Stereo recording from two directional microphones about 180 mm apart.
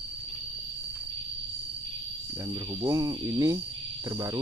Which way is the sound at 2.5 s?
25° right (ahead or behind).